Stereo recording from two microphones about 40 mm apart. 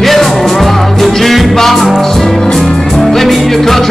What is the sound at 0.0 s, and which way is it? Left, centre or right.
Music, centre.